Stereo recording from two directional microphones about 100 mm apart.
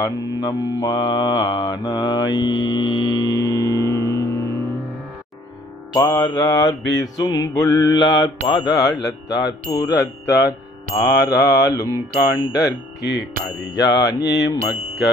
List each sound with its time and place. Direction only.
0.0 s mantra: 35° left (ahead or behind)
5.9 s mantra: 40° left (ahead or behind)
13.7 s mantra: 35° left (ahead or behind)